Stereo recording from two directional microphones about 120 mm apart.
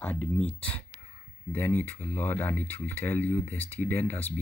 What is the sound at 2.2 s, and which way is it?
Speech, 15° left (ahead or behind).